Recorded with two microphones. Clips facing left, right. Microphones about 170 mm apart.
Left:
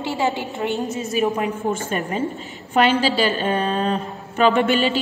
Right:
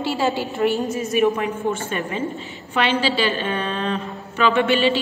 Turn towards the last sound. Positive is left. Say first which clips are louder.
# even
turn(degrees=45)  # may be behind; listen again after turning